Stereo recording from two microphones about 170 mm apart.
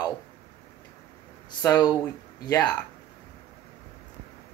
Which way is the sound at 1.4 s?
20° left (ahead or behind).